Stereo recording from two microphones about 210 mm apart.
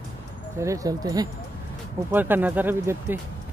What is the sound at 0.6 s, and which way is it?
Speech, 15° right (ahead or behind).